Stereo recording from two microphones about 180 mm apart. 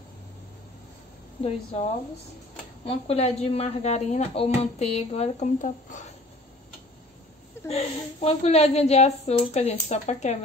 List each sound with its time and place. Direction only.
2.8 s speech: 35° left (ahead or behind)
7.6 s speech: 35° left (ahead or behind)